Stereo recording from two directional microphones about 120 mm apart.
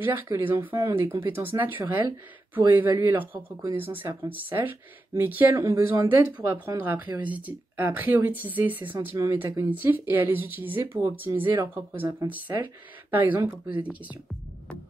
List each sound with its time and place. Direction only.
0.0 s speech: 15° right (ahead or behind)